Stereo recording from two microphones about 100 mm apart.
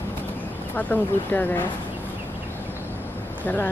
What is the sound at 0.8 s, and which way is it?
Speech, 15° left (ahead or behind).